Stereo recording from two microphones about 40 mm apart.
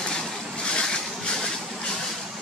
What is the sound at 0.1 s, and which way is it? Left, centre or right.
Vehicle, centre.